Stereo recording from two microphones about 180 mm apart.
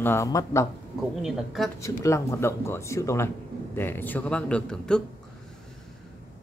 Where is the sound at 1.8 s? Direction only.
15° left (ahead or behind).